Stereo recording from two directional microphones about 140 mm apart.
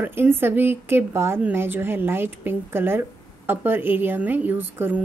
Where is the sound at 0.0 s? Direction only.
15° right (ahead or behind).